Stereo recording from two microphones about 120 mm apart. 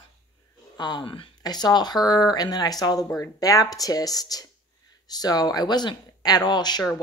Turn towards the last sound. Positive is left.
turn(degrees=35)  # may be behind; listen again after turning